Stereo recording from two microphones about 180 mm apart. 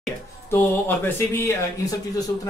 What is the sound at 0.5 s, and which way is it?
A man's voice, 15° left (ahead or behind).